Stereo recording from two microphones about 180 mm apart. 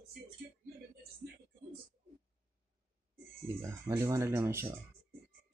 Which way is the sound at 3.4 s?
15° right (ahead or behind).